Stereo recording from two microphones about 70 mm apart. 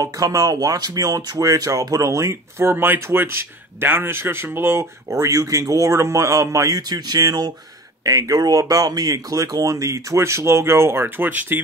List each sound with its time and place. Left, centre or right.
0.0 s speech: right
2.7 s speech: right
5.1 s speech: right
6.9 s speech: right